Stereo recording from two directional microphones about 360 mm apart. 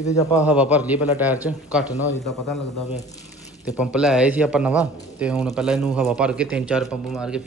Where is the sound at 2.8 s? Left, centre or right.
Centre.